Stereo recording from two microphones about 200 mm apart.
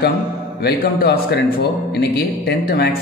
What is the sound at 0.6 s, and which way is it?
A man's voice, 55° left (ahead or behind).